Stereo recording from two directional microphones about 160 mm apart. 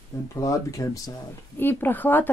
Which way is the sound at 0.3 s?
20° left (ahead or behind).